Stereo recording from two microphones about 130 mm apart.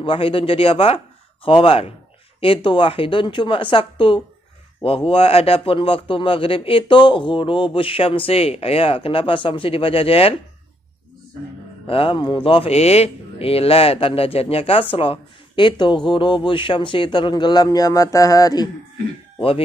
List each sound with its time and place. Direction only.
0.0 s a man's voice: 45° left (ahead or behind)
11.8 s a man's voice: 45° left (ahead or behind)